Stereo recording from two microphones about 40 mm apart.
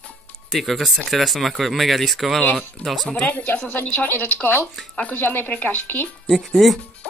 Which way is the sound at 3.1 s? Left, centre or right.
Left.